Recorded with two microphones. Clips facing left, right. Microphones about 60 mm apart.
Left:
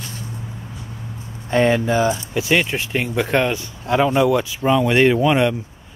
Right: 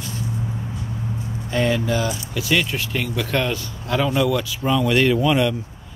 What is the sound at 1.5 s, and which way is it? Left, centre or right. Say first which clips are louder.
Speech: left 4 dB; left.